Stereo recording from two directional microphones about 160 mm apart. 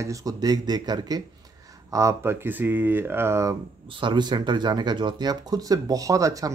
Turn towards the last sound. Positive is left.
turn(degrees=-20)  # may be behind; listen again after turning